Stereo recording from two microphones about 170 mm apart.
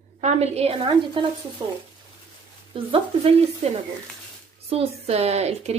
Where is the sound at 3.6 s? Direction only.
35° right (ahead or behind).